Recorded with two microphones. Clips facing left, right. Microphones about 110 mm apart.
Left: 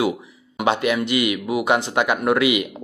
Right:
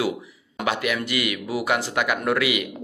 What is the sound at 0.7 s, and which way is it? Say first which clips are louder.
Speech: left 5 dB; 25° left (ahead or behind).